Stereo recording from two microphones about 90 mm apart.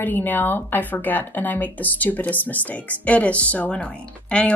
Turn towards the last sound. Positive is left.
turn(degrees=15)  # may be behind; listen again after turning